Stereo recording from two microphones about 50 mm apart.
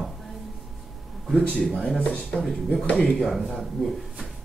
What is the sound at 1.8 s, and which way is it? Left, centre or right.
Speech, centre.